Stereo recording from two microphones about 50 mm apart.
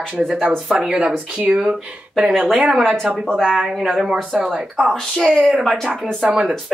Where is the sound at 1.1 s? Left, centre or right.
Right.